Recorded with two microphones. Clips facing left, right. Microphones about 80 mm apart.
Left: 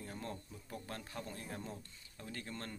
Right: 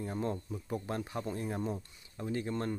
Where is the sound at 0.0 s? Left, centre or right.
Right.